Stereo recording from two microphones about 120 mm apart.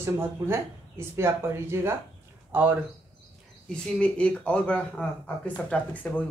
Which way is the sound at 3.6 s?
5° left (ahead or behind).